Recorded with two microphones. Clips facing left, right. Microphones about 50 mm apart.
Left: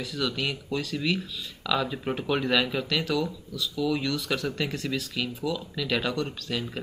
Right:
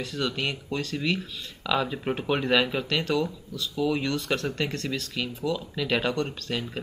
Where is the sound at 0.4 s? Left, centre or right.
Centre.